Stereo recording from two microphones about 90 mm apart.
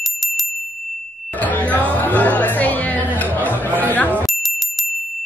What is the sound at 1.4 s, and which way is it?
Music, 15° left (ahead or behind).